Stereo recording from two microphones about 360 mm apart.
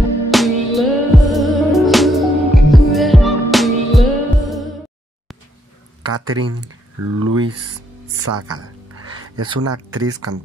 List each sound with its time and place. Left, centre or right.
0.3 s music: centre
6.1 s speech: right